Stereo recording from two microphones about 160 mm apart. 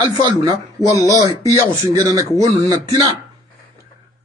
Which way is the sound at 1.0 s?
20° right (ahead or behind).